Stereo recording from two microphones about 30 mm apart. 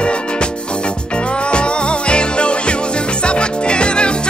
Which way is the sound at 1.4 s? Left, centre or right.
Left.